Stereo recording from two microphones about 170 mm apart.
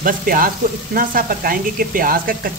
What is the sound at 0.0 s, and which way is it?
Speech, 55° right (ahead or behind).